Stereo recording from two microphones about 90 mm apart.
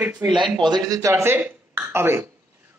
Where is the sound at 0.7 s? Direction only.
45° right (ahead or behind); by 1.4 s 30° right (ahead or behind).